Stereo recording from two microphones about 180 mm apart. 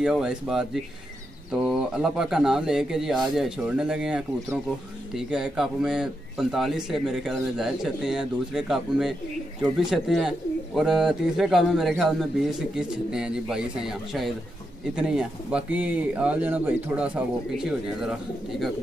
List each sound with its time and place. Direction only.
0.0 s speech: 5° right (ahead or behind)
1.7 s speech: centre (ahead or behind)